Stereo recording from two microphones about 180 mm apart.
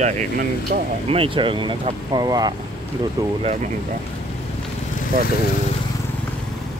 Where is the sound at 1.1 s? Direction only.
30° right (ahead or behind).